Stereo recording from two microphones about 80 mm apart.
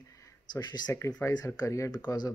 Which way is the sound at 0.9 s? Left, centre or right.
Left.